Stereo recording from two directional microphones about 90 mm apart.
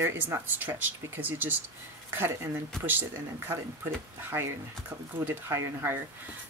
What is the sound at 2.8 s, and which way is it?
Speech, 20° right (ahead or behind).